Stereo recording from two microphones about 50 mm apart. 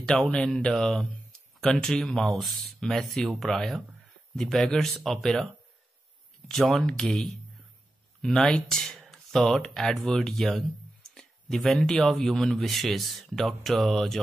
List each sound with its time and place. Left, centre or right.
0.0 s speech: centre
6.7 s speech: centre